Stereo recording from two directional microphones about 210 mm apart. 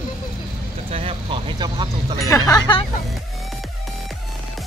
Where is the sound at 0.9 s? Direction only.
25° right (ahead or behind).